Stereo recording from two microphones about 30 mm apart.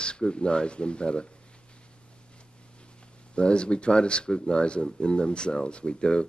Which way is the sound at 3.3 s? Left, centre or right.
Left.